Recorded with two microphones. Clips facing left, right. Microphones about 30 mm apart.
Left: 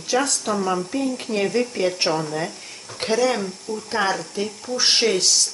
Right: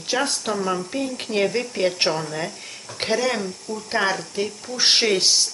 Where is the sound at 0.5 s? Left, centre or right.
Centre.